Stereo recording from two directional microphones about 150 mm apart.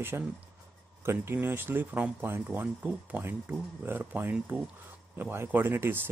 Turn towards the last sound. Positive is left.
turn(degrees=-15)  # may be behind; listen again after turning